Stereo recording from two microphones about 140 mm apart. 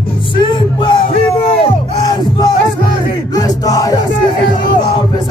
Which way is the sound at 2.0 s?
30° left (ahead or behind).